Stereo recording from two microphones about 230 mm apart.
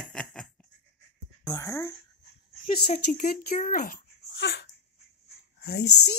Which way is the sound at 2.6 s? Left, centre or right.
Left.